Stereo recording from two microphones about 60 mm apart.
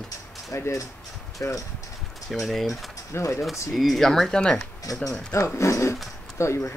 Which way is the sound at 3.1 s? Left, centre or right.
Left.